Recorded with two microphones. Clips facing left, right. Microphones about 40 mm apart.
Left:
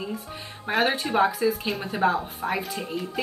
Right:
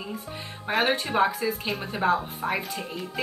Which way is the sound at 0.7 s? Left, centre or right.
Centre.